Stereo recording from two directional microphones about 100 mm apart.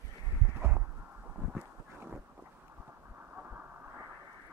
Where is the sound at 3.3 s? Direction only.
20° right (ahead or behind).